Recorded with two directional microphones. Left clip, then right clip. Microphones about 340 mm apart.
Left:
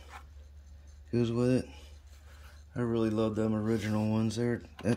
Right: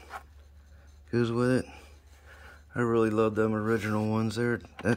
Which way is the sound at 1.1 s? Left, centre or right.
Centre.